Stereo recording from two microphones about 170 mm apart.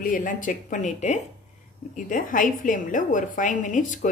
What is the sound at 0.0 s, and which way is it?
A woman's voice, 50° left (ahead or behind).